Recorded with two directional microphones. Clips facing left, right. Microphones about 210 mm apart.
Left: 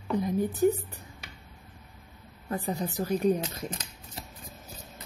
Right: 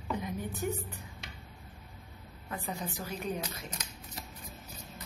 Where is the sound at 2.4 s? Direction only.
35° left (ahead or behind).